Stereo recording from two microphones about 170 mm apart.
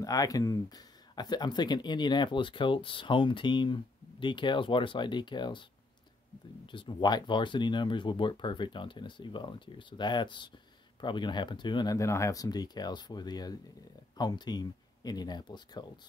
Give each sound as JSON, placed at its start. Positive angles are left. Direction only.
{"t": 0.0, "sound": "speech", "side_deg": 20}
{"t": 6.6, "sound": "speech", "side_deg": 30}